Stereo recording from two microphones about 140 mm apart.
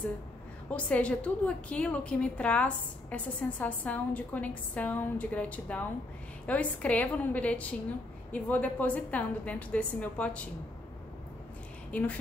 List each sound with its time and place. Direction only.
0.7 s a woman's voice: 10° left (ahead or behind)
11.9 s a woman's voice: 10° left (ahead or behind)